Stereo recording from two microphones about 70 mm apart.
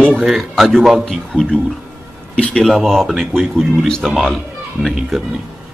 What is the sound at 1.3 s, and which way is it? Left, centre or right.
A man's voice, centre.